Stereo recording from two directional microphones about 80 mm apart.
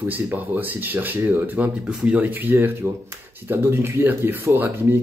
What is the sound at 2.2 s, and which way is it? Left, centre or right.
Speech, right.